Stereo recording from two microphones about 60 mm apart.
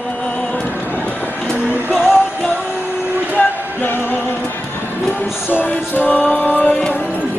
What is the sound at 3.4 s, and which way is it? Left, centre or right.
Music, left.